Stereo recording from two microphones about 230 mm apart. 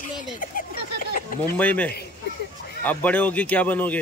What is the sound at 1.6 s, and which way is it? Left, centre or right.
Speech, centre.